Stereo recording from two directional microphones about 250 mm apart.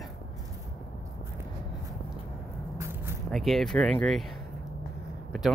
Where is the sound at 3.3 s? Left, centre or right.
Centre.